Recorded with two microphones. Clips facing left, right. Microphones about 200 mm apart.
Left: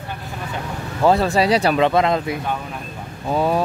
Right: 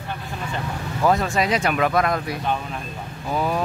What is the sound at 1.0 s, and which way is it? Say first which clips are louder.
Speech: left 4 dB; 30° left (ahead or behind).